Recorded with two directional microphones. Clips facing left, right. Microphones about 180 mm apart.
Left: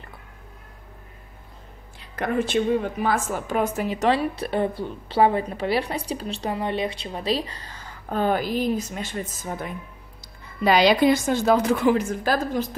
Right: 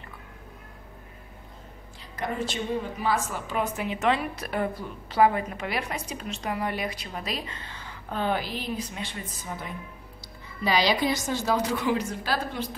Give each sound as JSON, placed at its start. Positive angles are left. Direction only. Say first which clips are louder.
{"t": 2.0, "sound": "a woman's voice", "louder": "left 6 dB", "side_deg": 55}